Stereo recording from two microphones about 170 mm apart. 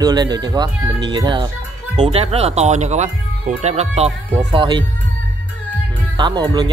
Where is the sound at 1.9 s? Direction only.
40° right (ahead or behind).